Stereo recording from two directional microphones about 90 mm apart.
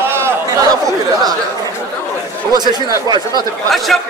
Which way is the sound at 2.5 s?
50° right (ahead or behind).